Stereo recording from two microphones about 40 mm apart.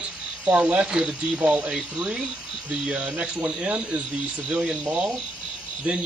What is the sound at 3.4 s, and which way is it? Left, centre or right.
Speech, right.